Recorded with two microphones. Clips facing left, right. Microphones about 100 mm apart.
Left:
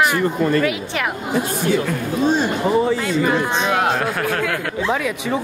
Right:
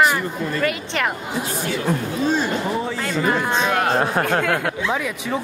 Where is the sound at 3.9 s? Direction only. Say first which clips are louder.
Right 2 dB; 30° right (ahead or behind).